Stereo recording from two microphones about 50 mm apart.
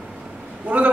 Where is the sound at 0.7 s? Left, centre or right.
Right.